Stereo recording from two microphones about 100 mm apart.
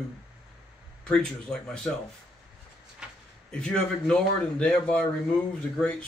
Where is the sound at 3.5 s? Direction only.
5° left (ahead or behind).